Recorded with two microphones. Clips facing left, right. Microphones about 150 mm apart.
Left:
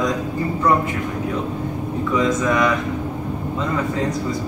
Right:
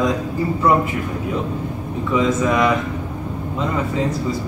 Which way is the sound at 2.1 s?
5° right (ahead or behind).